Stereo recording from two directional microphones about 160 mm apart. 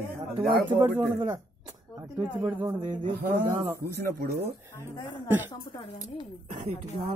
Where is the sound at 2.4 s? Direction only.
20° right (ahead or behind).